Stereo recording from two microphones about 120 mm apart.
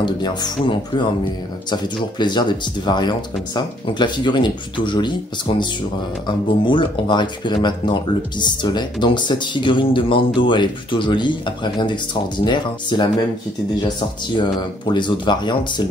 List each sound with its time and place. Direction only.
0.0 s speech: 40° left (ahead or behind)